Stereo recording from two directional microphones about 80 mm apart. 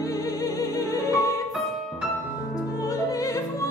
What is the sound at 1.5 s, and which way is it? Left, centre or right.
Music, centre.